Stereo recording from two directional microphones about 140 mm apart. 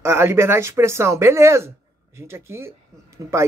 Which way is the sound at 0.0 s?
20° right (ahead or behind).